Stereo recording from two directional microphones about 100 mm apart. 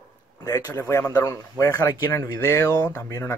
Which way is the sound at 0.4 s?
30° left (ahead or behind).